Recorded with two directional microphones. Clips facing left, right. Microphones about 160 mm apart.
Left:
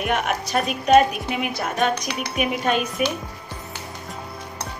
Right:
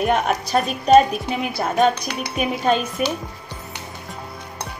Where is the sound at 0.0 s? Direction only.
35° right (ahead or behind).